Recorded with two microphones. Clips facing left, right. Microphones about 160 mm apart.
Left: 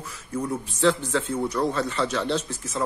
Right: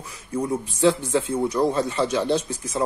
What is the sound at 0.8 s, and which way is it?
Speech, 10° right (ahead or behind).